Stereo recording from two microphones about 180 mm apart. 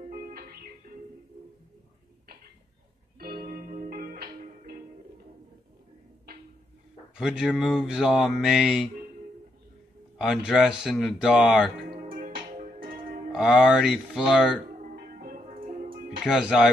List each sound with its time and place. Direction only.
0.1 s music: 55° right (ahead or behind)
3.2 s music: 60° right (ahead or behind)
7.2 s speech: centre (ahead or behind)
10.1 s speech: centre (ahead or behind)
11.9 s music: 30° right (ahead or behind)
12.2 s music: 50° right (ahead or behind)
13.3 s speech: 5° right (ahead or behind)
14.8 s music: 50° right (ahead or behind)
16.0 s music: 55° right (ahead or behind)
16.3 s speech: 5° right (ahead or behind)